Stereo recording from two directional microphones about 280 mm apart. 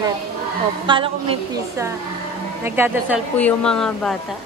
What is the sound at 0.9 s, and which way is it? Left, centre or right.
A woman's voice, centre.